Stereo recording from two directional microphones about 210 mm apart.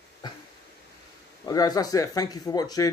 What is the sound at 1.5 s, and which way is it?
Speech, 15° left (ahead or behind).